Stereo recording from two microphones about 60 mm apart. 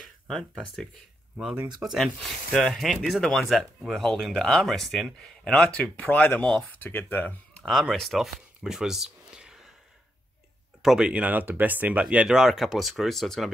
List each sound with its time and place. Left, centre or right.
0.0 s speech: centre
1.8 s speech: centre; by 7.3 s left
7.6 s speech: centre
10.8 s speech: centre
11.1 s speech: right
12.3 s speech: centre